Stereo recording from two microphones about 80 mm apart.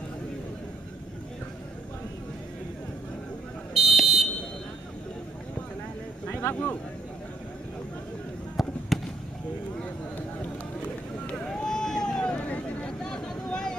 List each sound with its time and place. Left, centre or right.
3.7 s buzzer: centre
6.2 s a sound: left
8.5 s fireworks: centre
11.2 s vehicle: centre